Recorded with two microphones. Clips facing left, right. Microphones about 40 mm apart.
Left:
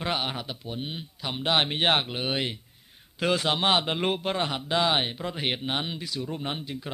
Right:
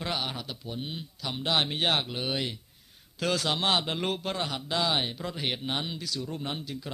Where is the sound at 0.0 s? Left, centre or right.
Left.